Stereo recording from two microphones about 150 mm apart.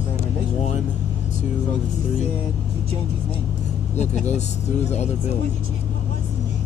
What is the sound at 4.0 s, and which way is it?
Speech, 50° left (ahead or behind).